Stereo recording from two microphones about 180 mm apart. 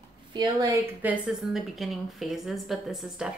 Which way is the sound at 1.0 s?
5° right (ahead or behind).